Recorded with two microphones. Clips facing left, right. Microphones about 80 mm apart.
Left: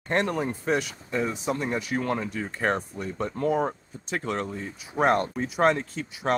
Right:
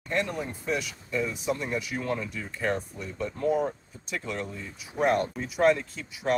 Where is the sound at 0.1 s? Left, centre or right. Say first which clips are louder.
Left 4 dB; left.